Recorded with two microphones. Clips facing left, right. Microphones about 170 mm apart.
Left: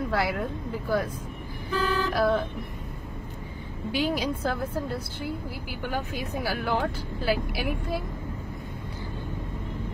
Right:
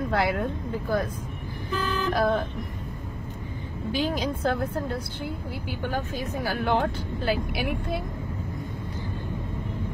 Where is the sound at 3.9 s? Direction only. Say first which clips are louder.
Even; 10° left (ahead or behind).